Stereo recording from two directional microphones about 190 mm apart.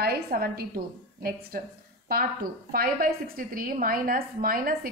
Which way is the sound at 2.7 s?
50° right (ahead or behind).